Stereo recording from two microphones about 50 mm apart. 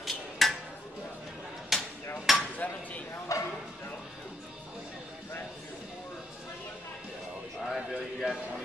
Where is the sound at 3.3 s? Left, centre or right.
Left.